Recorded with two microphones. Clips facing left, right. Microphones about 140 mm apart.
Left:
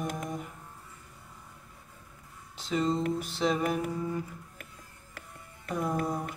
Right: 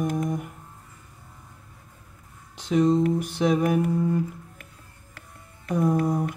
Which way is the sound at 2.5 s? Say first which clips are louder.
Right 8 dB; 15° right (ahead or behind).